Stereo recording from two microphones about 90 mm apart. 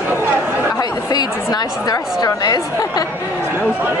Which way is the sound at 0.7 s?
45° left (ahead or behind).